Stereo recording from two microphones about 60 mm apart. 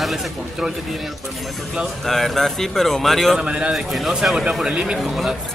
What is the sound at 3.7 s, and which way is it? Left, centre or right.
Speech, centre.